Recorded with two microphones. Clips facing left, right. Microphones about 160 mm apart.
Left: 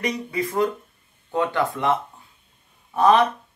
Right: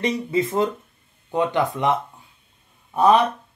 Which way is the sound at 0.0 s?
25° right (ahead or behind).